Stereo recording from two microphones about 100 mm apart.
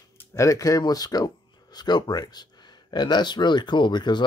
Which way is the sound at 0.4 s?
35° left (ahead or behind).